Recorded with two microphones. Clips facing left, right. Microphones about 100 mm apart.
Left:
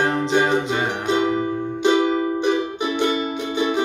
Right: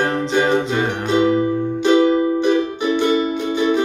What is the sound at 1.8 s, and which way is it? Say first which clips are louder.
Music: right 4 dB; 20° left (ahead or behind).